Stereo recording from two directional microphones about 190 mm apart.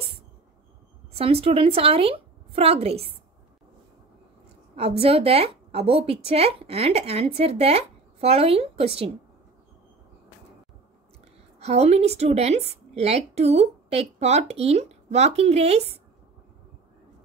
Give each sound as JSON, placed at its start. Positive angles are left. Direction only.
{"t": 1.1, "sound": "a woman's voice", "side_deg": -30}
{"t": 5.0, "sound": "a woman's voice", "side_deg": -30}
{"t": 11.6, "sound": "a woman's voice", "side_deg": -35}